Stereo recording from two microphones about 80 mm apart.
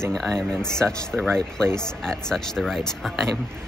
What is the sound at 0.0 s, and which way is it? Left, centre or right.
Speech, centre.